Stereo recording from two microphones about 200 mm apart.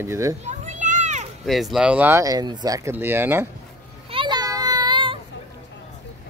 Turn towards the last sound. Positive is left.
turn(degrees=-25)  # may be behind; listen again after turning